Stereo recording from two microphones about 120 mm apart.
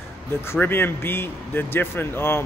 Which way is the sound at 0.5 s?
20° left (ahead or behind).